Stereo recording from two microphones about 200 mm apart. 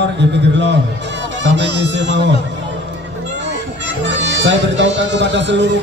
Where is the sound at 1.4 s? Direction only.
65° right (ahead or behind).